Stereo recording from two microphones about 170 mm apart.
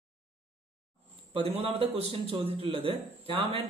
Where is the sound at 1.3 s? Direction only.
35° right (ahead or behind).